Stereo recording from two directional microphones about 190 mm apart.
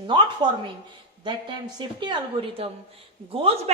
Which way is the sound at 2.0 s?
25° right (ahead or behind).